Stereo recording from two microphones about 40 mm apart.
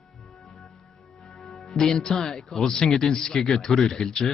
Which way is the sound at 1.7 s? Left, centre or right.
Centre.